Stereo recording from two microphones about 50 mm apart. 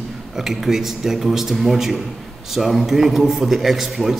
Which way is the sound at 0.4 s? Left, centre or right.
Centre.